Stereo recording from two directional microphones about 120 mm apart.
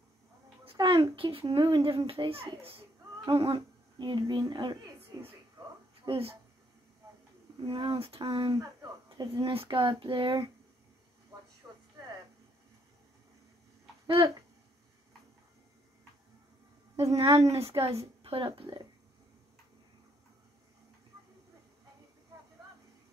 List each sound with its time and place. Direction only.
0.7 s a sound: 50° right (ahead or behind)
1.1 s a child's voice: 45° right (ahead or behind)
6.0 s speech: 50° right (ahead or behind)
7.6 s a child's voice: 50° right (ahead or behind)
11.6 s a sound: 20° right (ahead or behind)
14.0 s speech: 45° right (ahead or behind)
17.1 s a woman's voice: 55° right (ahead or behind)